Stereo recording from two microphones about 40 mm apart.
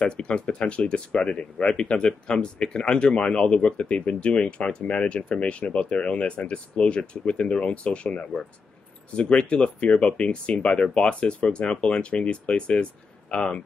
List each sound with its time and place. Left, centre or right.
0.0 s speech: left